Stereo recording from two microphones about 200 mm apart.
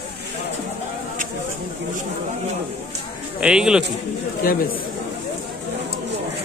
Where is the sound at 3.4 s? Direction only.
5° right (ahead or behind).